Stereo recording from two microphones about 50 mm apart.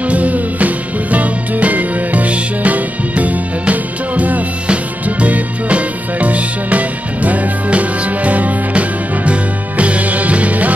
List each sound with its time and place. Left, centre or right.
0.0 s music: right